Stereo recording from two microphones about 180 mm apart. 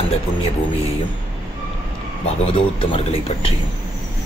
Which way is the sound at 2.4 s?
30° left (ahead or behind).